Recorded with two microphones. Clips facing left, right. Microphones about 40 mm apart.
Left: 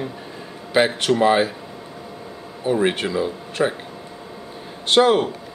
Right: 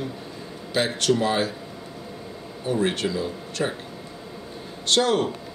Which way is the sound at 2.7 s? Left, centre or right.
Left.